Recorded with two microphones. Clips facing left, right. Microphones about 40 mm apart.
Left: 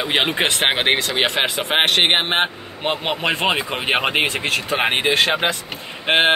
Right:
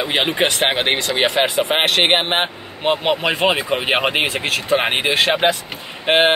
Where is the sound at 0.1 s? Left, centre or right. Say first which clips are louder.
Even; centre.